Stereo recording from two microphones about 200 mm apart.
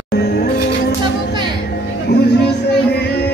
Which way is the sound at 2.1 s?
55° left (ahead or behind).